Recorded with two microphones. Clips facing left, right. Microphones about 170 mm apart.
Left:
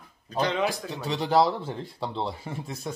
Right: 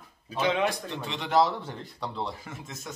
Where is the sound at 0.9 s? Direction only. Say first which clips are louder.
Left 4 dB; 35° left (ahead or behind).